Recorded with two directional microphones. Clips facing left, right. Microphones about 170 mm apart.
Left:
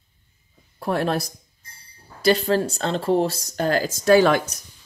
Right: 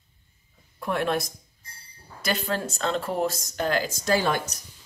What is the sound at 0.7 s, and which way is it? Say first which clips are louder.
Speech: left 3 dB; 35° left (ahead or behind).